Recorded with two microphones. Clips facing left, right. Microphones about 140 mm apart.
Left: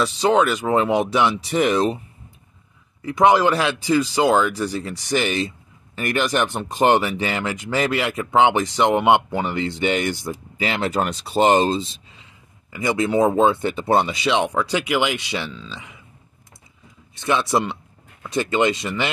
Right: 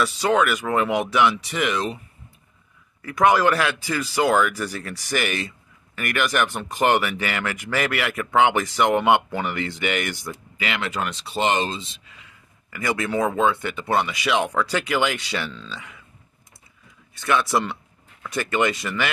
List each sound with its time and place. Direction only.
0.0 s speech: 25° left (ahead or behind)
3.0 s speech: 20° left (ahead or behind)
12.7 s speech: 20° left (ahead or behind)
17.1 s speech: 20° left (ahead or behind)